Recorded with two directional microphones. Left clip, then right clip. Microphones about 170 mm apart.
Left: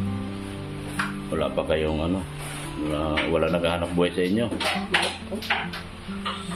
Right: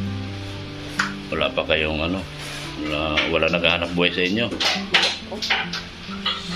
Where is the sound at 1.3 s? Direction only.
15° left (ahead or behind).